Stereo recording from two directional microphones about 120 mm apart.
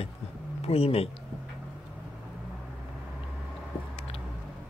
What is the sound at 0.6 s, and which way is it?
Speech, 55° left (ahead or behind).